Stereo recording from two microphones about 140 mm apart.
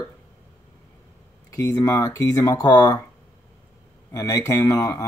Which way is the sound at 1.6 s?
20° left (ahead or behind).